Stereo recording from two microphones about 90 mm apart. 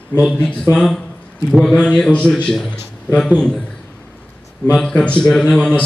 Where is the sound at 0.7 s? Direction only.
10° left (ahead or behind).